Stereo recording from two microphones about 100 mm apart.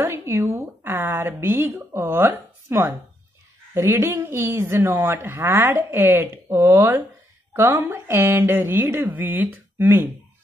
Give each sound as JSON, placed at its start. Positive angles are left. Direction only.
{"t": 0.0, "sound": "a woman's voice", "side_deg": -25}